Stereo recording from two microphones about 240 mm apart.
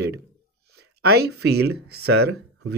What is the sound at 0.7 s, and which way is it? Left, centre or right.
Speech, right.